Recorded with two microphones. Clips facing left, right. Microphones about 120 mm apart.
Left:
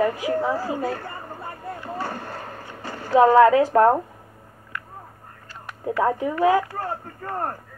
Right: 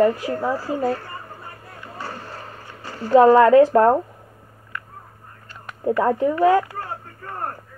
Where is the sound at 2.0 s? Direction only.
55° left (ahead or behind).